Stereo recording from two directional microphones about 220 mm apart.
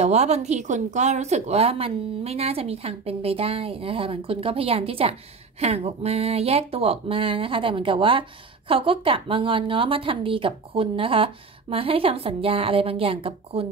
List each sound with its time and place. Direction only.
0.0 s speech: 30° right (ahead or behind)